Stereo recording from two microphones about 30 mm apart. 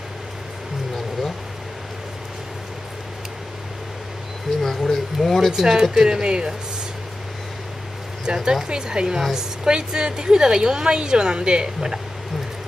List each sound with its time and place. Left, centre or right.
4.6 s a sound: centre
5.7 s speech: centre
6.2 s a woman's voice: right
8.3 s a woman's voice: right